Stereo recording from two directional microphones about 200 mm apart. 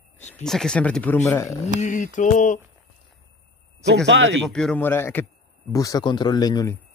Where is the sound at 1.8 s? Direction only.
40° left (ahead or behind).